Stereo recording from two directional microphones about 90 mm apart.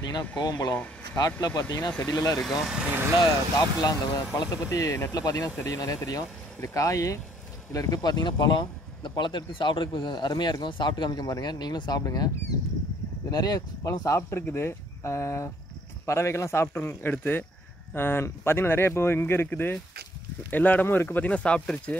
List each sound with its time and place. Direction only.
0.4 s speech: 45° left (ahead or behind)
1.9 s speech: 15° left (ahead or behind)
2.3 s speech: centre (ahead or behind)
3.5 s speech: 50° left (ahead or behind)
13.3 s speech: 45° left (ahead or behind); by 21.9 s 10° left (ahead or behind)